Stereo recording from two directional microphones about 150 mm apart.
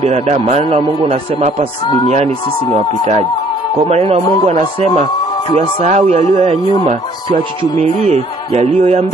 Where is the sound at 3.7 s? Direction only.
45° right (ahead or behind).